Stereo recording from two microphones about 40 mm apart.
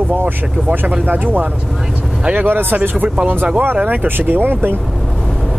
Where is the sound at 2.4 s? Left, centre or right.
Right.